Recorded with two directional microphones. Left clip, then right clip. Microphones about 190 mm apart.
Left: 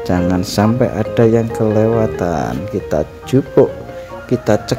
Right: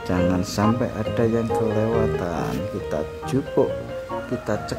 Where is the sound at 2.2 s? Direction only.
20° left (ahead or behind).